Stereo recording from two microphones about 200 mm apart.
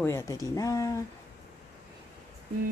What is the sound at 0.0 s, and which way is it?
Speech, 15° left (ahead or behind).